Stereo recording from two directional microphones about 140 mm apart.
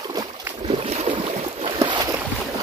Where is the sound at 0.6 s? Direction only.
45° right (ahead or behind).